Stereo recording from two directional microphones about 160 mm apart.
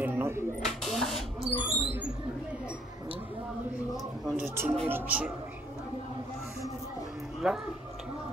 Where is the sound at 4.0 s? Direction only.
Centre (ahead or behind).